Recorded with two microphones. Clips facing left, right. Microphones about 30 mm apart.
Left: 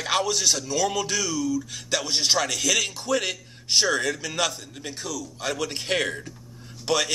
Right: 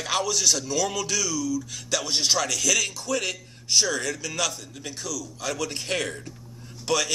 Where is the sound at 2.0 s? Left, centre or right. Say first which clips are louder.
Left 1 dB; centre.